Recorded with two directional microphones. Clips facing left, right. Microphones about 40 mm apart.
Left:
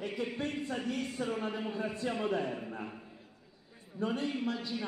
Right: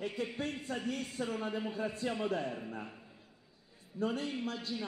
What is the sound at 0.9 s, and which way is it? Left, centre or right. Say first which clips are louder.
A man's voice: left 2 dB; left.